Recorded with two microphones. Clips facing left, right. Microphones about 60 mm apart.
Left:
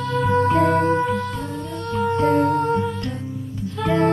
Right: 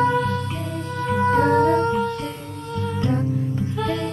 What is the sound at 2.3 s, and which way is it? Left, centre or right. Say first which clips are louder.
Music: left 16 dB; left.